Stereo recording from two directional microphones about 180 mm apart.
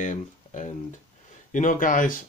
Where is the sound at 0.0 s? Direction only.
45° left (ahead or behind).